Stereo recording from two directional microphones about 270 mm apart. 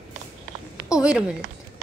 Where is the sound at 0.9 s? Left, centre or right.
Centre.